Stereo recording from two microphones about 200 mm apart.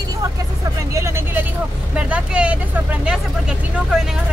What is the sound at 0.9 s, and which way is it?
Vehicle, 15° right (ahead or behind).